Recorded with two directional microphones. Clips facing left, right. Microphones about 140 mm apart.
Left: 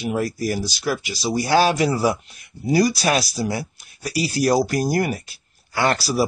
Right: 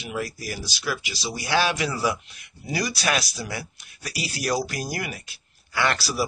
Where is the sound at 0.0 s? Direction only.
45° left (ahead or behind).